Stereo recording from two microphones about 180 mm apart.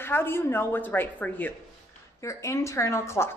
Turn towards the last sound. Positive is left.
turn(degrees=15)  # may be behind; listen again after turning